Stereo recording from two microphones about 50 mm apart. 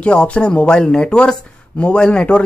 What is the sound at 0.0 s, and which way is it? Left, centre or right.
Speech, left.